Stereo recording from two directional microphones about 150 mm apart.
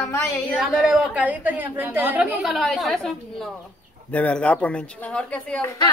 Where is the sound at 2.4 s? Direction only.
Centre (ahead or behind).